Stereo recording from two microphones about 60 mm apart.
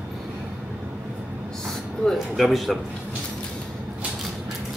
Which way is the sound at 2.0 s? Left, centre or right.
Centre.